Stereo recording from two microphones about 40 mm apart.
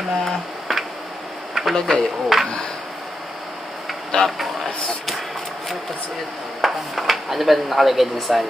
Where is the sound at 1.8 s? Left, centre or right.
Left.